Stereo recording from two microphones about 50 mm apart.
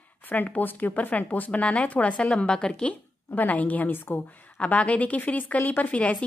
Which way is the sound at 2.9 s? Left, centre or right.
Left.